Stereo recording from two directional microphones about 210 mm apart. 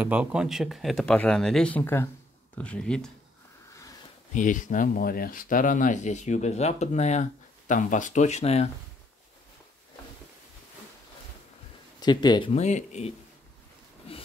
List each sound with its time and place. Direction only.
0.0 s speech: 5° right (ahead or behind)
4.3 s speech: 35° left (ahead or behind)
12.0 s speech: 20° left (ahead or behind)
12.5 s speech: 35° left (ahead or behind)
14.1 s a sound: 25° left (ahead or behind)